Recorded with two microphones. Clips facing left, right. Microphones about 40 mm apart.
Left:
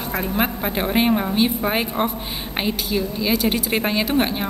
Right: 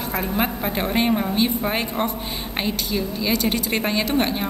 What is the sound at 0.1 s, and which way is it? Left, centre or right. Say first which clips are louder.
A woman's voice: left 1 dB; centre.